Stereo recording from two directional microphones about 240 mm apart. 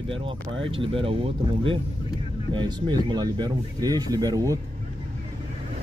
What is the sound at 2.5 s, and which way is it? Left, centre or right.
Speech, centre.